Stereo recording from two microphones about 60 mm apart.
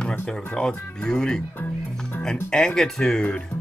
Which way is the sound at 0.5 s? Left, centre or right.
Centre.